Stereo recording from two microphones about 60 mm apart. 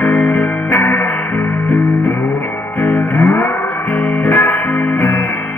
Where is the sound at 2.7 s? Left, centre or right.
Left.